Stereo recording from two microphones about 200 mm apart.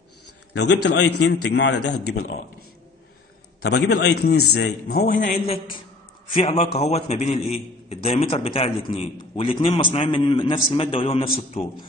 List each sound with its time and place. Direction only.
0.5 s a man's voice: 60° left (ahead or behind)
3.6 s a man's voice: 55° left (ahead or behind); by 11.7 s 30° left (ahead or behind)